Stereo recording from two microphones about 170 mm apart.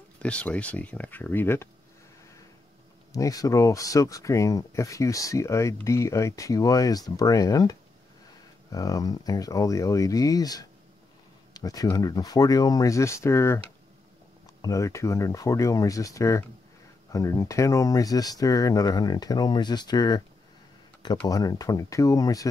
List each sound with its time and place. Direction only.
0.2 s speech: 5° left (ahead or behind)
3.1 s speech: 20° left (ahead or behind)
8.7 s speech: 20° left (ahead or behind)
14.6 s speech: 20° left (ahead or behind)
21.3 s speech: 20° left (ahead or behind)